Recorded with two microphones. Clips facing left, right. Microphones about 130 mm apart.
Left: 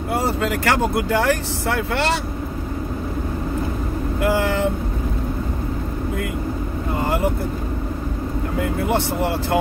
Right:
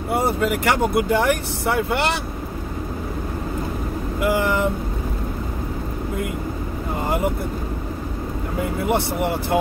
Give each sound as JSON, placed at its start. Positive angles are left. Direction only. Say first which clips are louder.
{"t": 0.5, "sound": "speech", "louder": "even", "side_deg": -15}